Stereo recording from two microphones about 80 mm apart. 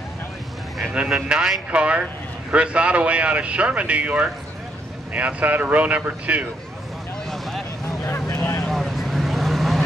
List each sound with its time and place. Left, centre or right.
0.9 s a man's voice: centre
7.2 s vehicle: centre
8.0 s vehicle: left
8.6 s vehicle: centre